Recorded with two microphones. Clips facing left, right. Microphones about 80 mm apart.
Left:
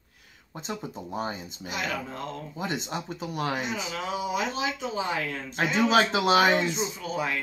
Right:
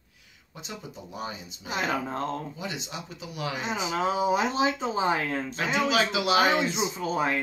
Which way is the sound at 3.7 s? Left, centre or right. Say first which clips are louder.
Right 4 dB; right.